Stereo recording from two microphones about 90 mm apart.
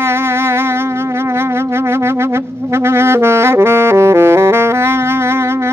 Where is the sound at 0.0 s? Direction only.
30° right (ahead or behind).